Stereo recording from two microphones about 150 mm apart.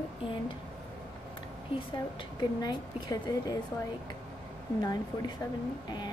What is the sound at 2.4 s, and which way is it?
A woman's voice, 25° left (ahead or behind).